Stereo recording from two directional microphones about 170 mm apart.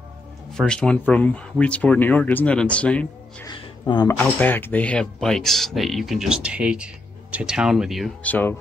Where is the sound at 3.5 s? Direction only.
25° left (ahead or behind).